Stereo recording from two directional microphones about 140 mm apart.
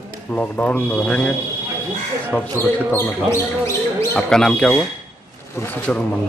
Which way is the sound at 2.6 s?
15° left (ahead or behind).